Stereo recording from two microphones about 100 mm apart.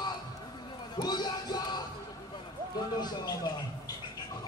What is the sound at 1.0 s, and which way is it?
Music, 45° left (ahead or behind).